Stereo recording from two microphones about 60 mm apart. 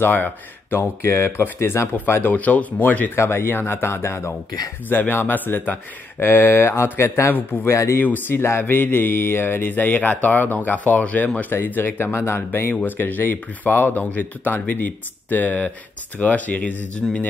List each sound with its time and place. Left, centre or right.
0.0 s speech: left
0.7 s speech: left
2.3 s speech: left
3.2 s speech: left
4.8 s speech: left
7.6 s speech: left
8.0 s speech: left
12.1 s speech: left
12.8 s speech: left